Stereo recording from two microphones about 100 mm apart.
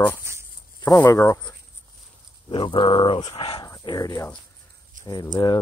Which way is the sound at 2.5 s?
60° left (ahead or behind).